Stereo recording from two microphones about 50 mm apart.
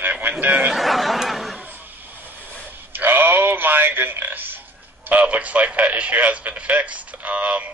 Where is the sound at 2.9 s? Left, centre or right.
Right.